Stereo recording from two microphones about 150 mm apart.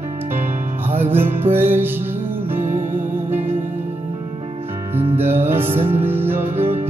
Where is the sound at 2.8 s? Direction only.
60° right (ahead or behind).